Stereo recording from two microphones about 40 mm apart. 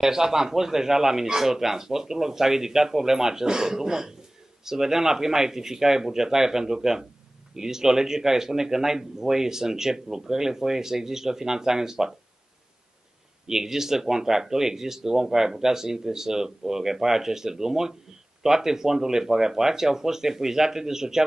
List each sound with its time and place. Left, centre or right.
0.0 s a man's voice: centre
13.5 s a man's voice: centre